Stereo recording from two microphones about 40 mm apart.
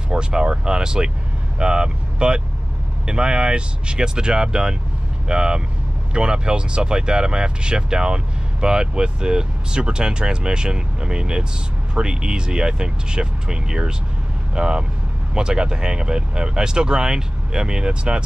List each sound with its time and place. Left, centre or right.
0.1 s speech: right